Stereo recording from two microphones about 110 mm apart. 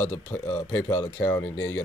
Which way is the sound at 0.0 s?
20° left (ahead or behind).